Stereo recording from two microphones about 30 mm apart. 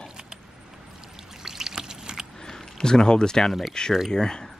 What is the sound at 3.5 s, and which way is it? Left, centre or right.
Speech, centre.